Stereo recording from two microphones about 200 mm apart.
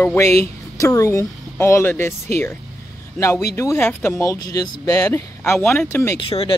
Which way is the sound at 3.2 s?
15° left (ahead or behind).